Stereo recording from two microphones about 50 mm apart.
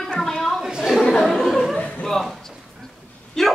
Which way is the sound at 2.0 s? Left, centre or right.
Centre.